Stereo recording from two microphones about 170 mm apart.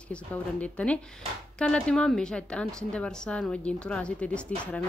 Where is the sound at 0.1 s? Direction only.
5° left (ahead or behind).